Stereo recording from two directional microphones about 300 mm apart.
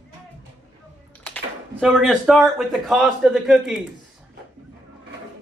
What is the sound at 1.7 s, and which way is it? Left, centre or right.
A man's voice, centre.